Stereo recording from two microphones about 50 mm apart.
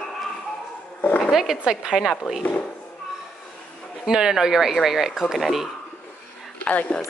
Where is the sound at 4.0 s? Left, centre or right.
Centre.